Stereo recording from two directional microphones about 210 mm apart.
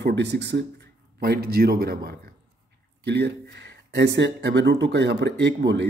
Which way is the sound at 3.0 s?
50° right (ahead or behind).